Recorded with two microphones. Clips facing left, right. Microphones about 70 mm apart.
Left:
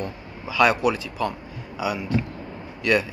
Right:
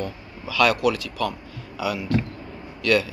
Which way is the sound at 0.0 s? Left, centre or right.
Left.